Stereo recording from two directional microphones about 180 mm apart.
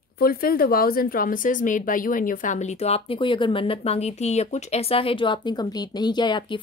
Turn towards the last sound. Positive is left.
turn(degrees=25)  # may be behind; listen again after turning